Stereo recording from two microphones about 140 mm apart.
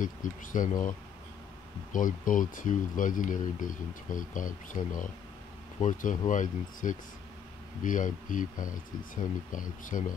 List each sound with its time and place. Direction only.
0.0 s speech: 70° left (ahead or behind)
1.9 s speech: 70° left (ahead or behind)